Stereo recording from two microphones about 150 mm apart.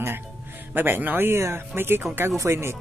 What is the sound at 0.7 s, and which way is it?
Speech, 15° right (ahead or behind).